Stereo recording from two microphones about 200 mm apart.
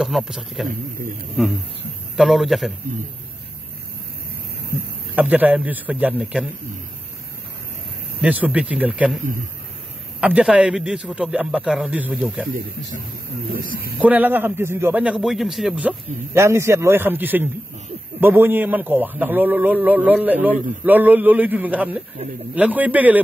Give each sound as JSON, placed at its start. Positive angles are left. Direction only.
{"t": 0.0, "sound": "a man's voice", "side_deg": 0}
{"t": 0.7, "sound": "a man's voice", "side_deg": -45}
{"t": 1.4, "sound": "a man's voice", "side_deg": 0}
{"t": 5.1, "sound": "a man's voice", "side_deg": -10}
{"t": 8.2, "sound": "a man's voice", "side_deg": -5}
{"t": 9.2, "sound": "a man's voice", "side_deg": -40}
{"t": 10.2, "sound": "a man's voice", "side_deg": -5}
{"t": 13.9, "sound": "a man's voice", "side_deg": -10}